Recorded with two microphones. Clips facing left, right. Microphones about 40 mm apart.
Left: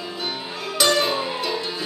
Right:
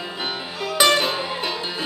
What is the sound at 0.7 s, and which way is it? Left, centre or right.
Music, right.